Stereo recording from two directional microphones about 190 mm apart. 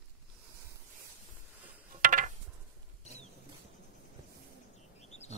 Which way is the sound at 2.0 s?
45° right (ahead or behind).